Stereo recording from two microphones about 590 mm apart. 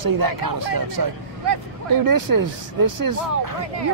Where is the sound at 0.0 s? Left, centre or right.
Right.